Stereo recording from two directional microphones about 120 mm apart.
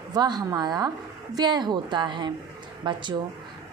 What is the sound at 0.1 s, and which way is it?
A woman's voice, 35° right (ahead or behind).